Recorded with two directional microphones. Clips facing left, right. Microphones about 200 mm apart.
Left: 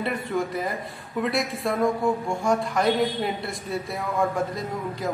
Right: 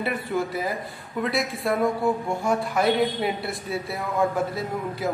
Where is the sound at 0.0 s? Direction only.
5° right (ahead or behind).